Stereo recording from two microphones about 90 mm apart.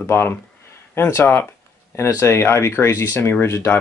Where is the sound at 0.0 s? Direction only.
25° left (ahead or behind).